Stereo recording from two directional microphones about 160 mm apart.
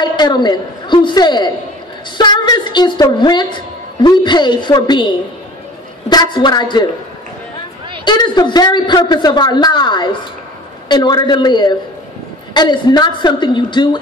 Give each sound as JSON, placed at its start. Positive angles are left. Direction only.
{"t": 0.0, "sound": "a man's voice", "side_deg": 25}
{"t": 6.0, "sound": "a man's voice", "side_deg": 25}
{"t": 8.0, "sound": "a man's voice", "side_deg": 25}